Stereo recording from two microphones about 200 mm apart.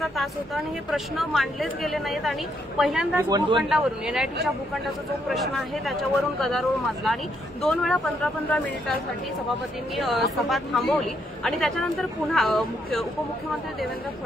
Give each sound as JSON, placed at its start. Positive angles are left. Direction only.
{"t": 0.0, "sound": "speech", "side_deg": 0}
{"t": 3.3, "sound": "speech", "side_deg": -20}
{"t": 3.6, "sound": "speech", "side_deg": 0}
{"t": 9.9, "sound": "speech", "side_deg": 0}